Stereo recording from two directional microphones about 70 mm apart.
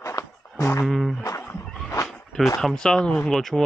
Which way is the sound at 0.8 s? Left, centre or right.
Centre.